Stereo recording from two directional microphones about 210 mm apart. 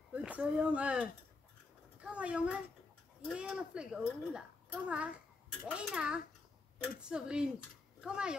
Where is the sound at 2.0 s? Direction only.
5° right (ahead or behind).